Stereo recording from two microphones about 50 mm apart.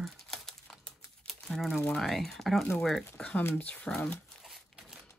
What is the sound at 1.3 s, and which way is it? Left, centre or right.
Crumpling, centre.